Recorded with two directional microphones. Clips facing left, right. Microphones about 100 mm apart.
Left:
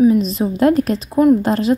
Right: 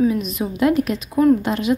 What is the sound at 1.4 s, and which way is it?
Speech, 35° left (ahead or behind).